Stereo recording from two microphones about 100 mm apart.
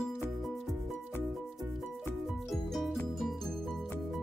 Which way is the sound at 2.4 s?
Centre (ahead or behind).